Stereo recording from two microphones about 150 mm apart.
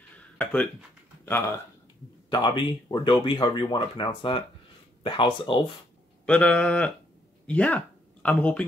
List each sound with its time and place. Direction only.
0.4 s speech: 10° left (ahead or behind)
2.2 s speech: 30° left (ahead or behind)
6.2 s a sound: 5° left (ahead or behind)
7.4 s speech: 10° left (ahead or behind)